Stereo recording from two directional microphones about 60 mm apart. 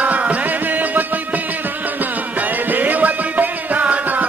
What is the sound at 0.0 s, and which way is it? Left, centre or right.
Music, right.